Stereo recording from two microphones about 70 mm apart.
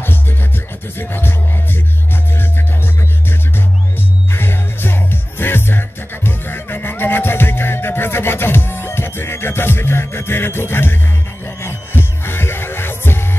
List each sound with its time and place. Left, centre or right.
0.9 s music: left
4.3 s music: left